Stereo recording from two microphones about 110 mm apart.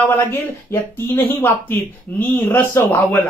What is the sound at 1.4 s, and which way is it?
Speech, 20° left (ahead or behind).